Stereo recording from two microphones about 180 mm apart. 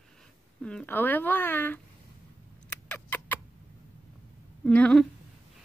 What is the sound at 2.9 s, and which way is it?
Vehicle, 10° left (ahead or behind).